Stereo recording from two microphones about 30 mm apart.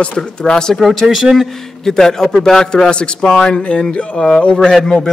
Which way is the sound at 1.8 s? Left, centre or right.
Centre.